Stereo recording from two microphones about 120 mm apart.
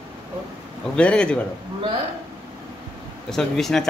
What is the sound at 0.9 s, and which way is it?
Speech, 10° left (ahead or behind).